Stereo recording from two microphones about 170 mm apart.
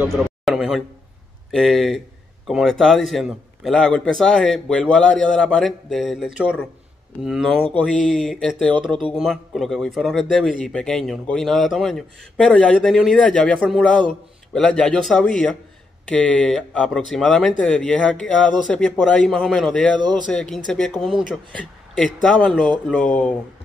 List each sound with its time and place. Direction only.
0.1 s a sound: centre (ahead or behind)
1.5 s a man's voice: centre (ahead or behind)
20.0 s speech: 25° right (ahead or behind)
20.2 s a man's voice: 5° left (ahead or behind)